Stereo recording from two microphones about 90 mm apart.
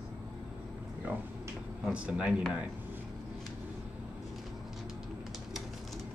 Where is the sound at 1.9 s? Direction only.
15° right (ahead or behind).